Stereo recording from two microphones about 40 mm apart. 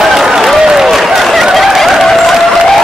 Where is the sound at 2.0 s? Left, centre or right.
Centre.